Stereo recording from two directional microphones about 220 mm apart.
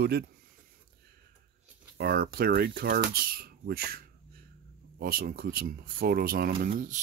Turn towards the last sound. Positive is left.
turn(degrees=-35)  # may be behind; listen again after turning